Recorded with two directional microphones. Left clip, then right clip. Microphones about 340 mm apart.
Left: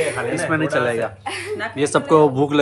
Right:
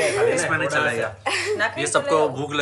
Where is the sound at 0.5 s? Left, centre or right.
Centre.